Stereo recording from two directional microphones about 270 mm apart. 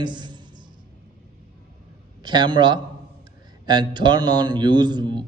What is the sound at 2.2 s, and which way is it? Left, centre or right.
A man's voice, centre.